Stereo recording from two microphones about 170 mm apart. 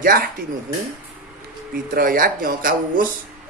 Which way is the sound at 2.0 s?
60° right (ahead or behind).